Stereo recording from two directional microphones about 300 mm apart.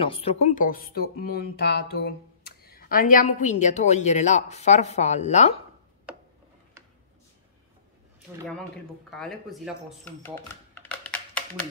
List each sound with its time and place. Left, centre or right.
0.0 s speech: centre
9.1 s speech: centre